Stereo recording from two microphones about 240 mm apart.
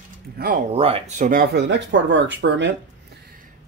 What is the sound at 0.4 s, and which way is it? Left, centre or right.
Speech, right.